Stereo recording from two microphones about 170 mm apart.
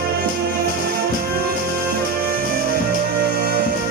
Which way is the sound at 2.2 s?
65° right (ahead or behind).